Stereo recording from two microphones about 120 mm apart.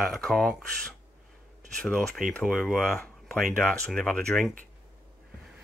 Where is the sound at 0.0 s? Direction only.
Centre (ahead or behind).